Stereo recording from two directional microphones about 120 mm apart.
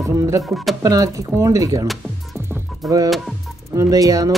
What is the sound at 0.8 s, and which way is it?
Speech, 30° right (ahead or behind).